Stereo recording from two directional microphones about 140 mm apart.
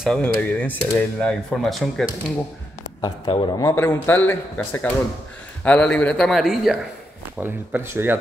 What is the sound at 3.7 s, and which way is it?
A man's voice, 15° left (ahead or behind).